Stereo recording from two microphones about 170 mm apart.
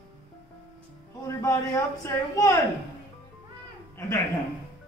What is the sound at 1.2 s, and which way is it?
Speech, 20° left (ahead or behind).